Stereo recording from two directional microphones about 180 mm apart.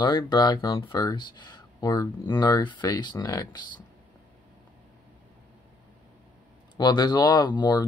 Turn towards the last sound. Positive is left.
turn(degrees=20)  # may be behind; listen again after turning